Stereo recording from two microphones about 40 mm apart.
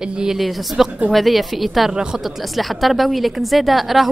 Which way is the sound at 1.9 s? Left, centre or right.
Centre.